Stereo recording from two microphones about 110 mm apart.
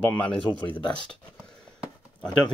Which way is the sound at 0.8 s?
45° left (ahead or behind).